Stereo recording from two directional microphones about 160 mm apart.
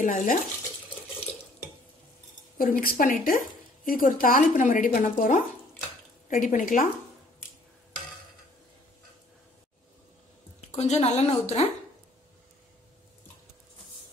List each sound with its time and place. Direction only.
0.0 s a woman's voice: 55° left (ahead or behind)
2.5 s a woman's voice: 60° left (ahead or behind)
10.7 s a woman's voice: 45° left (ahead or behind)